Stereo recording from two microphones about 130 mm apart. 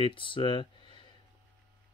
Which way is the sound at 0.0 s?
40° left (ahead or behind).